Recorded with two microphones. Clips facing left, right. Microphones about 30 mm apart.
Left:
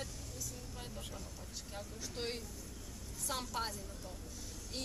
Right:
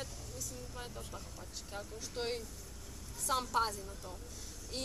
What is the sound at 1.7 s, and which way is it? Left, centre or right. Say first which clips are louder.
A woman's voice: right 3 dB; centre.